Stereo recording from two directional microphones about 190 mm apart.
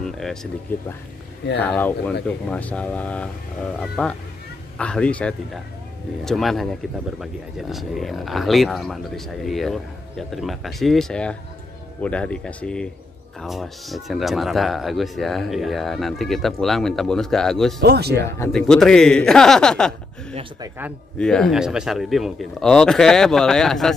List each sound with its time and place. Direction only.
0.0 s speech: centre (ahead or behind)
1.6 s speech: 10° left (ahead or behind)
17.8 s speech: 55° right (ahead or behind)
18.5 s speech: 5° left (ahead or behind)